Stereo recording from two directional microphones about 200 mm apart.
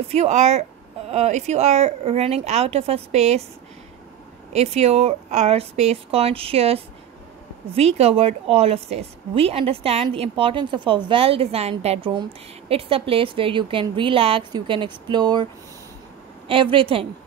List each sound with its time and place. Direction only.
0.1 s speech: 35° right (ahead or behind)
4.5 s a woman's voice: 30° right (ahead or behind)
16.7 s a woman's voice: 25° right (ahead or behind)